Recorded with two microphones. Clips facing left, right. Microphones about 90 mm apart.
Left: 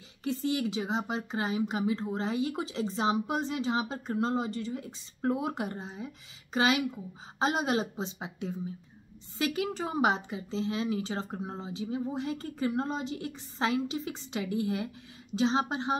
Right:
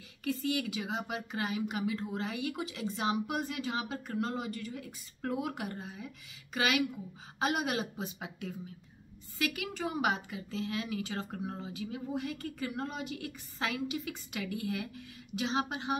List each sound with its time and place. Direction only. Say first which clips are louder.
0.2 s a woman's voice: left 3 dB; 25° left (ahead or behind)